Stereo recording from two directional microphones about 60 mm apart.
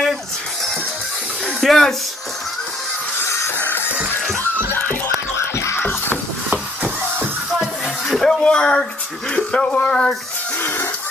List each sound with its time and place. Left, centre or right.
1.6 s a sound: centre
3.2 s music: left
3.5 s music: left
5.4 s music: left
8.2 s a sound: centre
9.3 s speech: centre